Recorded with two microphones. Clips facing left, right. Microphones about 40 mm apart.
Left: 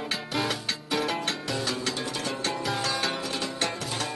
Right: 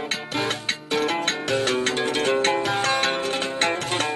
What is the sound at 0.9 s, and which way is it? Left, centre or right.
Music, right.